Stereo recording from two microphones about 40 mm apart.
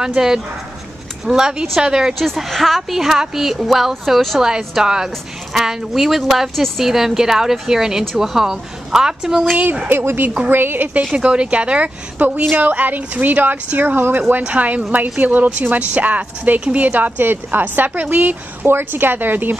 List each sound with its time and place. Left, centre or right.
0.0 s a woman's voice: centre
2.1 s a woman's voice: centre
9.8 s speech: right
10.9 s a woman's voice: right
14.4 s a woman's voice: right
17.2 s a woman's voice: right
18.7 s speech: right